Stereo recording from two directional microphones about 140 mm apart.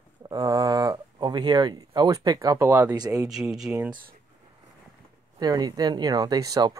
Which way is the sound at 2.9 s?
30° right (ahead or behind).